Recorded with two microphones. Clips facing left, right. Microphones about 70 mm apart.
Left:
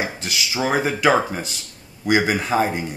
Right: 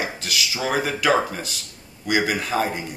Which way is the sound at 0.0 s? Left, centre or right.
Left.